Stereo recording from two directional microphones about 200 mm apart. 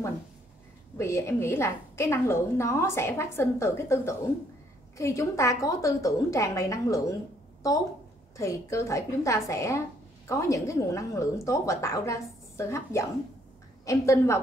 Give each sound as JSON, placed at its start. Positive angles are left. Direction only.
{"t": 0.9, "sound": "a woman's voice", "side_deg": 15}
{"t": 8.4, "sound": "a woman's voice", "side_deg": 15}